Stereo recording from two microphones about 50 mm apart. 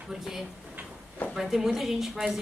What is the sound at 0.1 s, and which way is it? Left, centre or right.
A woman's voice, centre.